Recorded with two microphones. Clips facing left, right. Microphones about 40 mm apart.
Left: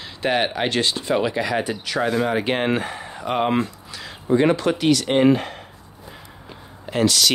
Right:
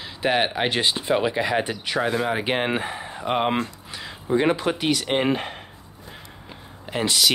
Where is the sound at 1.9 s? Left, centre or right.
Centre.